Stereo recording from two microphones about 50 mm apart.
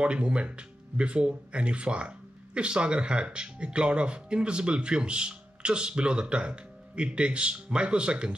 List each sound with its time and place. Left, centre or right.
0.0 s speech: right